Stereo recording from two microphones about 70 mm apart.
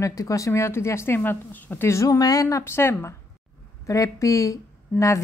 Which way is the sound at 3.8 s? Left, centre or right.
Left.